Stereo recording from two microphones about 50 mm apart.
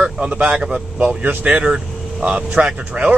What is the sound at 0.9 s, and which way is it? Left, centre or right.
Speech, right.